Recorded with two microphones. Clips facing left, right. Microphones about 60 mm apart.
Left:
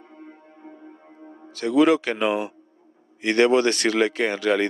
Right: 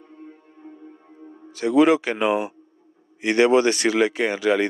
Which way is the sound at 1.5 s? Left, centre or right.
Centre.